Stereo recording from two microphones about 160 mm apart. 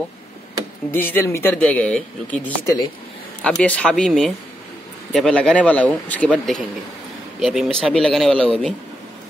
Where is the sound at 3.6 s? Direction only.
10° left (ahead or behind).